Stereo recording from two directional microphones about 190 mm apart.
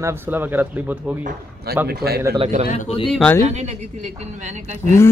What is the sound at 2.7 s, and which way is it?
Speech, 35° left (ahead or behind).